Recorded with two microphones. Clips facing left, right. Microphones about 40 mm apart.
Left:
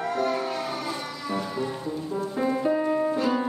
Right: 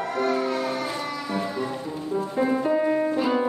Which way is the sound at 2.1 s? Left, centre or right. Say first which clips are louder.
Right 4 dB; centre.